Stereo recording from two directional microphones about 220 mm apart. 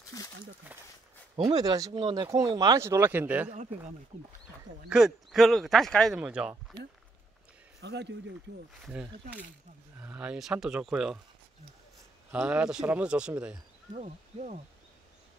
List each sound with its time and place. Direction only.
0.1 s speech: 15° left (ahead or behind)
1.3 s speech: 15° right (ahead or behind)
4.8 s speech: centre (ahead or behind)
7.8 s speech: 50° right (ahead or behind)
8.8 s speech: 5° right (ahead or behind)
12.3 s speech: 5° right (ahead or behind)
13.9 s speech: 30° right (ahead or behind)